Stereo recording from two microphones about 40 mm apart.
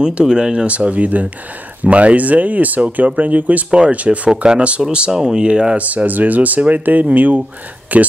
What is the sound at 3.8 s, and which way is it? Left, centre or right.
Speech, right.